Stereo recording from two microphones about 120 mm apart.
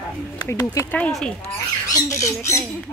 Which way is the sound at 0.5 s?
25° left (ahead or behind).